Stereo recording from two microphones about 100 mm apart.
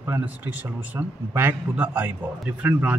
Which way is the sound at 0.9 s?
20° right (ahead or behind).